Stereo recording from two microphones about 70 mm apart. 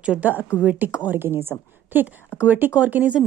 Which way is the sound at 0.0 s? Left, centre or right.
Centre.